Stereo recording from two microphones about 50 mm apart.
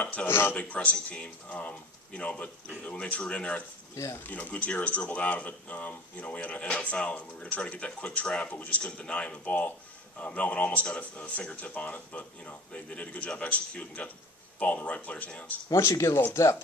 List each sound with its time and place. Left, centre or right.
0.0 s speech: left
0.3 s speech: left
0.6 s speech: left
3.9 s speech: left
4.3 s speech: left
15.7 s speech: left
16.3 s speech: left